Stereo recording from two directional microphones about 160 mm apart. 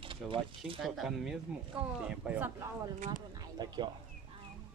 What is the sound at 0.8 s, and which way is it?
Speech, centre (ahead or behind).